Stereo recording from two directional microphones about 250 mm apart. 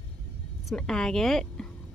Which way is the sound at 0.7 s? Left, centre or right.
Centre.